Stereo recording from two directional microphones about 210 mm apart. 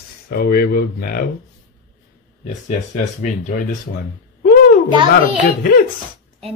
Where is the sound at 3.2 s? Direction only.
35° left (ahead or behind).